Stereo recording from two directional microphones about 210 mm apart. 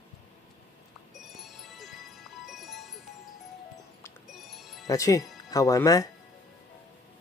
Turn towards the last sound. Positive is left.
turn(degrees=15)  # may be behind; listen again after turning